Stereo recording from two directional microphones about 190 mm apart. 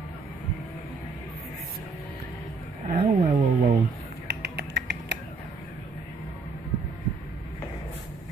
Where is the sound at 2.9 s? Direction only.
35° right (ahead or behind).